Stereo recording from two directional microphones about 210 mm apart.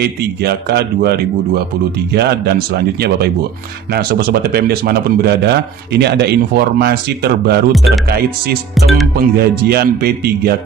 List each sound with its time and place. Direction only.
0.0 s speech: 50° right (ahead or behind)
7.7 s speech: centre (ahead or behind)
8.1 s speech: 50° right (ahead or behind)
8.7 s speech: centre (ahead or behind)
9.1 s speech: 50° right (ahead or behind)